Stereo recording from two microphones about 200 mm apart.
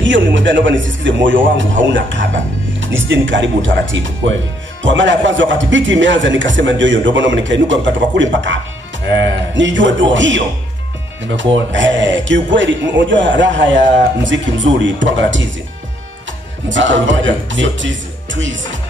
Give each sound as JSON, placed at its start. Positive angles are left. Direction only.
{"t": 0.0, "sound": "a man's voice", "side_deg": -65}
{"t": 11.5, "sound": "a man's voice", "side_deg": -65}
{"t": 16.6, "sound": "a man's voice", "side_deg": -65}